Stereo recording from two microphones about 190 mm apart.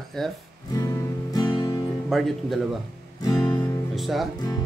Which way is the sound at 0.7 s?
20° left (ahead or behind).